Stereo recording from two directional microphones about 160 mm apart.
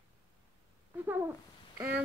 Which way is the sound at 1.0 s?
15° right (ahead or behind).